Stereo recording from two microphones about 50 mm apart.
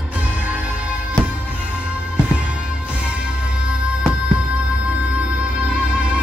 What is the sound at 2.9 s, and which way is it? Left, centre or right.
Music, right.